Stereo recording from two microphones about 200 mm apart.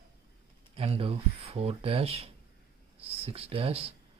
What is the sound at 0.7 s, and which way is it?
Speech, 30° right (ahead or behind).